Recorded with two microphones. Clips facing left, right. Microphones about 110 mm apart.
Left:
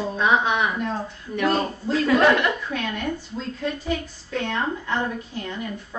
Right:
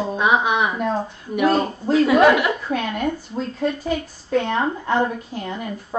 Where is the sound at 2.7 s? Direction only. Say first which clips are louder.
Right 4 dB; 45° right (ahead or behind).